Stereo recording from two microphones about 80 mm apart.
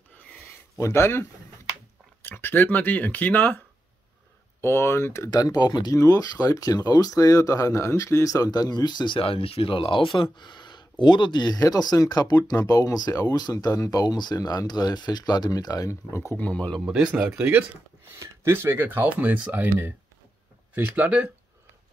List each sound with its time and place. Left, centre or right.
0.7 s speech: left
2.2 s speech: left
5.9 s speech: left
9.7 s speech: left
10.3 s speech: left
16.3 s speech: centre
16.8 s speech: centre
17.4 s speech: centre
18.2 s speech: right